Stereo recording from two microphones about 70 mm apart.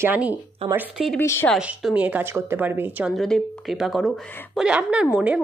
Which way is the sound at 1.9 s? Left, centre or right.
Right.